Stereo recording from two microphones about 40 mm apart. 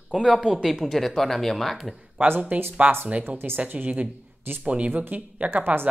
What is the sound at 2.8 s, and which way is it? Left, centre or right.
Speech, right.